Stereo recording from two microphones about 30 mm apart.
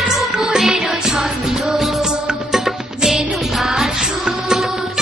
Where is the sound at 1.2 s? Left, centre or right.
Centre.